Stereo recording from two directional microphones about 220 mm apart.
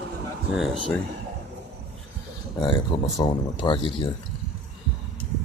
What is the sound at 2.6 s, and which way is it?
Speech, 20° left (ahead or behind).